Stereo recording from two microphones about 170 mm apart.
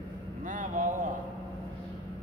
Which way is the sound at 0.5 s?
50° right (ahead or behind).